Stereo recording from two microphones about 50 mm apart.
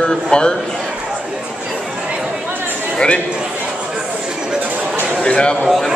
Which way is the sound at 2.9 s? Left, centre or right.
Left.